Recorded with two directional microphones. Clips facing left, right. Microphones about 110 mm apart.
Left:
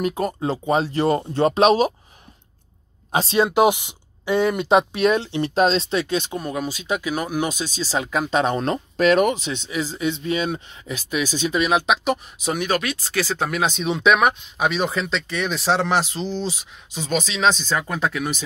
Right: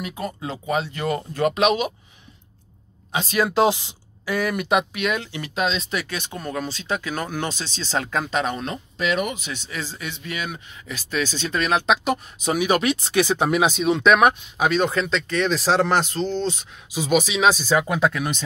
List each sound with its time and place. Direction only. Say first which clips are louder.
0.0 s speech: left 7 dB; 40° left (ahead or behind)
3.1 s speech: left 3 dB; 30° left (ahead or behind); by 8.3 s 10° left (ahead or behind)
8.3 s speech: left 4 dB; 20° left (ahead or behind)
8.5 s speech: left 7 dB; 40° left (ahead or behind)
9.4 s speech: left 6 dB; 20° left (ahead or behind); by 12.6 s centre (ahead or behind)
12.6 s speech: right 3 dB; 25° right (ahead or behind); by 16.6 s 5° left (ahead or behind)
16.9 s speech: right 4 dB; 10° right (ahead or behind)